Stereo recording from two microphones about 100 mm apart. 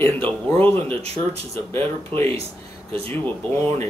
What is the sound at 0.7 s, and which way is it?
Speech, 90° right.